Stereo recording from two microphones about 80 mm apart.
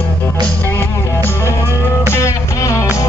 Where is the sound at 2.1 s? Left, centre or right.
Left.